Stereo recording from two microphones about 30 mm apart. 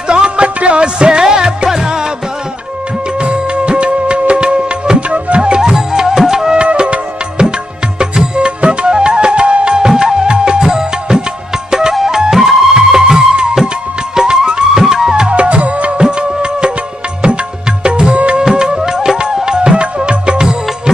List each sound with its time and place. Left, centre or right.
0.1 s music: right
3.2 s music: right
5.5 s music: right
6.6 s music: right
10.6 s music: right
15.3 s music: right
16.0 s music: right
17.8 s music: right
18.4 s music: right